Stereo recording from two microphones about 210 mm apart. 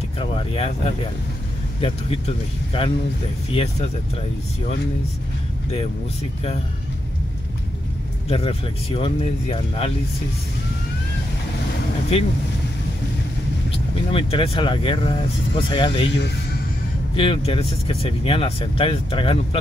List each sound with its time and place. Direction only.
0.2 s speech: 25° left (ahead or behind)
8.3 s speech: 30° left (ahead or behind)
12.1 s speech: 30° left (ahead or behind)
13.7 s speech: 25° left (ahead or behind)
17.1 s speech: 25° left (ahead or behind)